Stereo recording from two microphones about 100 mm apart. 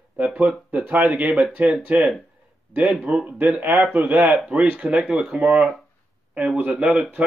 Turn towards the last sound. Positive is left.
turn(degrees=-10)  # may be behind; listen again after turning